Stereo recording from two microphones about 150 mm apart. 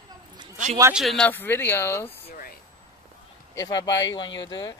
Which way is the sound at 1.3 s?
15° left (ahead or behind).